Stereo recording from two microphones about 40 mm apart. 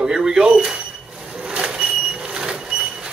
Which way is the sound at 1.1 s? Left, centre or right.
Centre.